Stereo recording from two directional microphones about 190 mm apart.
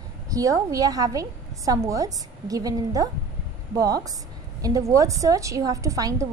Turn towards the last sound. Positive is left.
turn(degrees=-20)  # may be behind; listen again after turning